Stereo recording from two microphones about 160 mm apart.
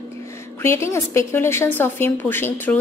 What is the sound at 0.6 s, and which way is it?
A woman's voice, 15° left (ahead or behind).